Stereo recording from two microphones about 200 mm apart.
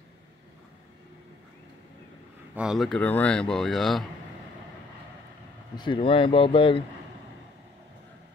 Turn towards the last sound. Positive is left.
turn(degrees=25)  # may be behind; listen again after turning